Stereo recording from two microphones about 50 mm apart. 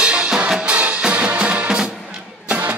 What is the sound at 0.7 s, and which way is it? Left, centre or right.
Music, right.